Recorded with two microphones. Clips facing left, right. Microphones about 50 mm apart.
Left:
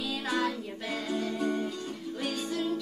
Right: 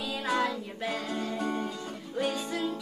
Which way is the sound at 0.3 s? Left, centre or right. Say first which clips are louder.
Right 2 dB; centre.